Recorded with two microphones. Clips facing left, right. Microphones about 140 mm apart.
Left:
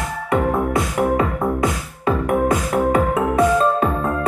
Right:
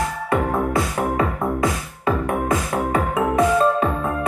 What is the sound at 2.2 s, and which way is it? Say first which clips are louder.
Music: left 3 dB; 25° left (ahead or behind).